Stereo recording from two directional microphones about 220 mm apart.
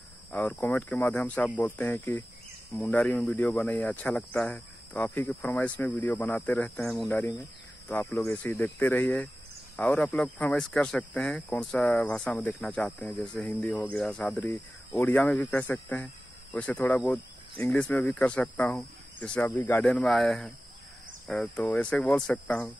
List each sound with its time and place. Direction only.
0.3 s speech: 5° left (ahead or behind)